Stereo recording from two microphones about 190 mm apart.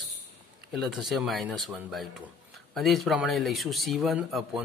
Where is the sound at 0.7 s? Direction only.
Centre (ahead or behind).